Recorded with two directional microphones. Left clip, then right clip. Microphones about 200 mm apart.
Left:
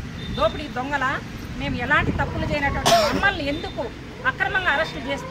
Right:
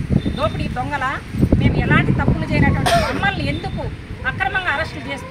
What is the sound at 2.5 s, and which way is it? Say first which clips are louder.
Speech: right 4 dB; centre (ahead or behind).